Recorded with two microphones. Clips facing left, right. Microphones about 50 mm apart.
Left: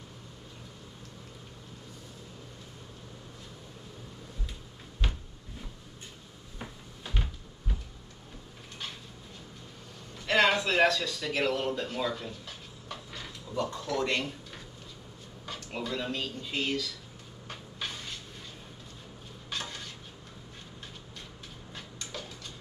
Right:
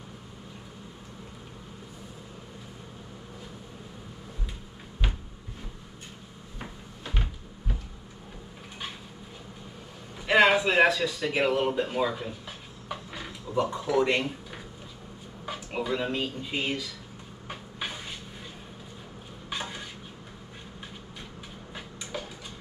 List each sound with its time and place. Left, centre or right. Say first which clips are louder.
6.6 s cupboard open or close: right 2 dB; centre
10.2 s speech: right 4 dB; centre
17.5 s cupboard open or close: right 3 dB; centre
19.5 s stir: right 3 dB; centre
21.7 s a sound: right 5 dB; centre